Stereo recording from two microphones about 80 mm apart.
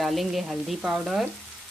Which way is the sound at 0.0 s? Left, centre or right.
Centre.